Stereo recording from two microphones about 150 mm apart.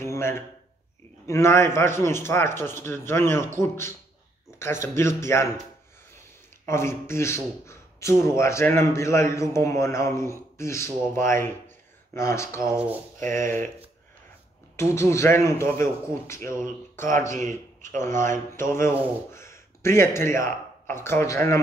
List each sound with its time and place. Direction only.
0.0 s a sound: 15° left (ahead or behind)
1.2 s speech: 20° left (ahead or behind)
6.6 s speech: 15° left (ahead or behind)
12.7 s a sound: 10° right (ahead or behind)
13.2 s speech: 15° left (ahead or behind)
14.8 s speech: 20° left (ahead or behind)
17.3 s a man's voice: 55° right (ahead or behind)
18.0 s speech: 15° left (ahead or behind)